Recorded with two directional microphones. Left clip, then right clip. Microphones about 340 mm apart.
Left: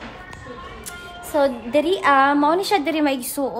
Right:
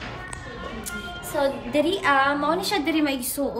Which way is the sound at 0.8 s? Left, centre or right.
Left.